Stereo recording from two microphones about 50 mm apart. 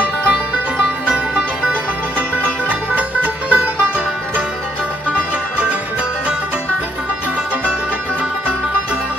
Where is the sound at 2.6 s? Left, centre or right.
Right.